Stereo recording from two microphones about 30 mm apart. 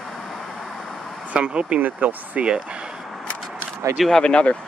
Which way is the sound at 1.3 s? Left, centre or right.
Right.